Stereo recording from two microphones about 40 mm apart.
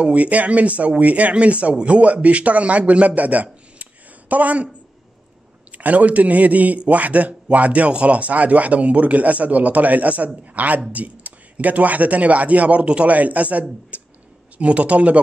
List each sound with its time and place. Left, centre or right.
0.0 s speech: right
3.7 s a sound: right
5.7 s speech: right